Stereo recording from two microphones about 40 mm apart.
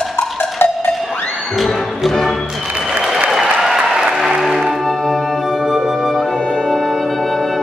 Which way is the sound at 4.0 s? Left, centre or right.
Centre.